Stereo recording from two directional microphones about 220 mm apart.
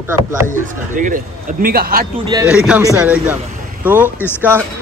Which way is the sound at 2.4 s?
5° right (ahead or behind).